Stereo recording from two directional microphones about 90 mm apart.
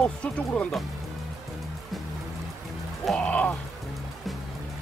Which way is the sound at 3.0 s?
10° left (ahead or behind).